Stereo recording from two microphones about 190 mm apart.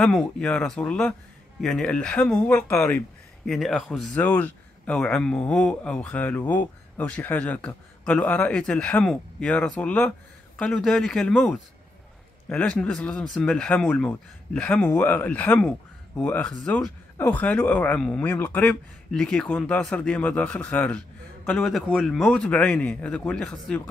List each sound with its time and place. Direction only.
0.0 s a man's voice: centre (ahead or behind)